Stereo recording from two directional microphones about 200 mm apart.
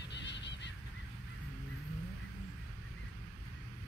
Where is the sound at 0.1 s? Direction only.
60° left (ahead or behind).